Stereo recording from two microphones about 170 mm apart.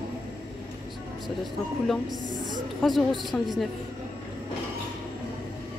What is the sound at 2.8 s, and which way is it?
Speech, centre (ahead or behind).